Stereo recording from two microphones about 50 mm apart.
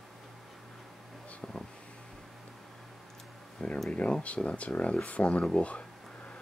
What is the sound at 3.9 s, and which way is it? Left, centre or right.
Speech, left.